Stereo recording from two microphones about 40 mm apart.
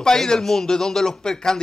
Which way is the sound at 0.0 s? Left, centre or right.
Centre.